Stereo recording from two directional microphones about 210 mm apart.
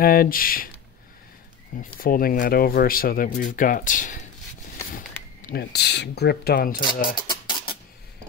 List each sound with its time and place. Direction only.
0.0 s speech: 45° left (ahead or behind)
1.8 s speech: 45° left (ahead or behind)
7.2 s a sound: 20° left (ahead or behind)